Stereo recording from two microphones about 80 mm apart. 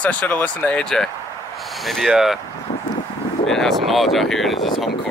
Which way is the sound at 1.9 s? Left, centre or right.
Centre.